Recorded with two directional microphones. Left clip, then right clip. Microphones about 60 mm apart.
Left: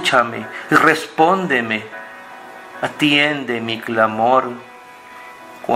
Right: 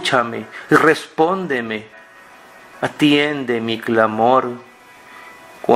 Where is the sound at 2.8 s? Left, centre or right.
Centre.